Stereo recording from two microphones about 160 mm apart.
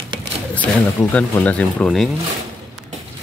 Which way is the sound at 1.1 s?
10° left (ahead or behind).